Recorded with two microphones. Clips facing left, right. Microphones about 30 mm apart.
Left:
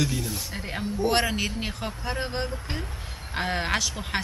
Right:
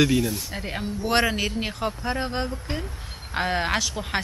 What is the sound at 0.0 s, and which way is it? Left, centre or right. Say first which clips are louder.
Speech: right 7 dB; right.